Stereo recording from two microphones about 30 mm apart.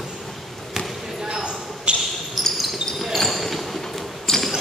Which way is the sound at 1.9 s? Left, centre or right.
Right.